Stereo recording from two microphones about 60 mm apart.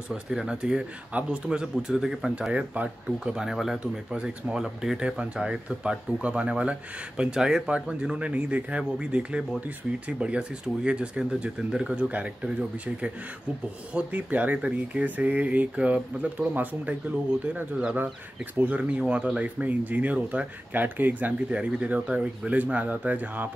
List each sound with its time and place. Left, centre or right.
0.1 s speech: centre
2.5 s speech: right
3.3 s speech: centre
3.9 s speech: centre
18.6 s speech: right